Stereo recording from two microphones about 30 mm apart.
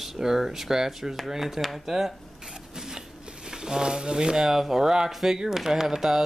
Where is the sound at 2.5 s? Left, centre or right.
Centre.